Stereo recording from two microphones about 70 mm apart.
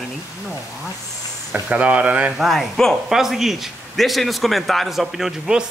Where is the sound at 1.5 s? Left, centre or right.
Right.